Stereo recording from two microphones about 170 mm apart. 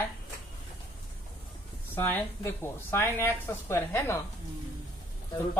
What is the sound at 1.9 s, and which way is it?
Speech, 10° left (ahead or behind).